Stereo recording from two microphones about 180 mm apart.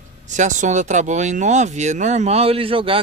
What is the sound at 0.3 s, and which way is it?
Speech, 45° right (ahead or behind).